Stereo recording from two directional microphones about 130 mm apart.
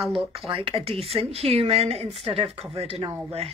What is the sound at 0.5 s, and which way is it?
A woman's voice, 45° right (ahead or behind).